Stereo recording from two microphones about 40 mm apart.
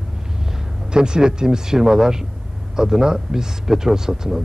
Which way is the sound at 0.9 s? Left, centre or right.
Right.